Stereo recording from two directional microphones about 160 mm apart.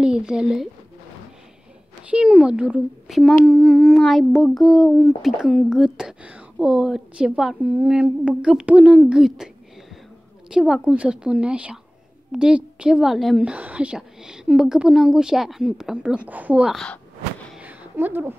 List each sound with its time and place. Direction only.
0.0 s speech: 5° right (ahead or behind)
2.0 s a child's voice: 5° right (ahead or behind)
10.5 s speech: 5° right (ahead or behind)
17.6 s a sound: 10° right (ahead or behind)